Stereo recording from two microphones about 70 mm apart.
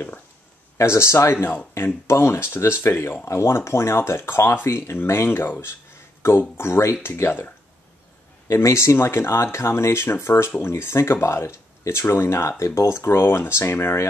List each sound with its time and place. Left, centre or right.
0.7 s speech: left
8.5 s speech: left